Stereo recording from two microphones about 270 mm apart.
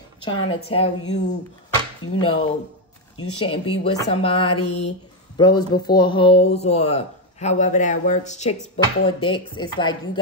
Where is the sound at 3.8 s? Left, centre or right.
Left.